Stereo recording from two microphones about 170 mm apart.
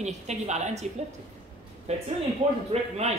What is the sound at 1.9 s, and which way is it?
A woman's voice, 40° right (ahead or behind).